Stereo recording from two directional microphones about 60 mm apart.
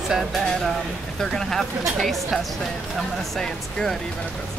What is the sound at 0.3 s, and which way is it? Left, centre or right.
A woman's voice, centre.